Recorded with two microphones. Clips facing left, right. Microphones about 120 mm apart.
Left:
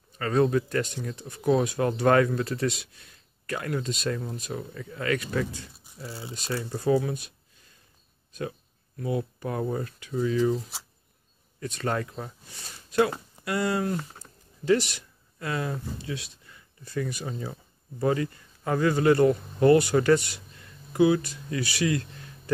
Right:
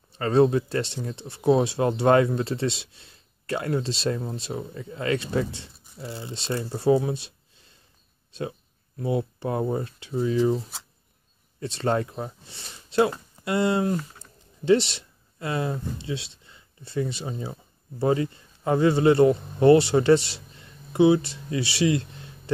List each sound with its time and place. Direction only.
0.1 s speech: 30° right (ahead or behind)
8.4 s speech: 25° right (ahead or behind)
11.6 s speech: 25° right (ahead or behind)